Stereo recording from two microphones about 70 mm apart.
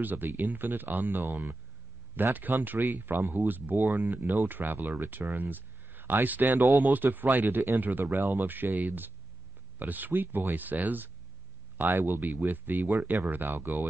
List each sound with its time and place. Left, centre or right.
0.0 s speech: right